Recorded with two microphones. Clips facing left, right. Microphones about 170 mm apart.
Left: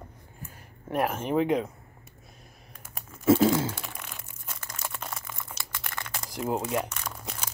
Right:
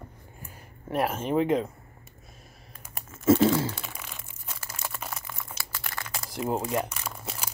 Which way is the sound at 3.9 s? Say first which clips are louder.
Even; 5° right (ahead or behind).